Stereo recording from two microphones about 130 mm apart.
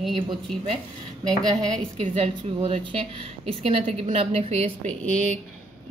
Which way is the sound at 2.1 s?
50° right (ahead or behind).